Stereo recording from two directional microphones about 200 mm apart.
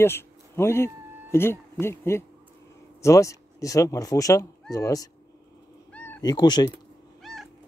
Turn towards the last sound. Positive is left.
turn(degrees=0)  # may be behind; listen again after turning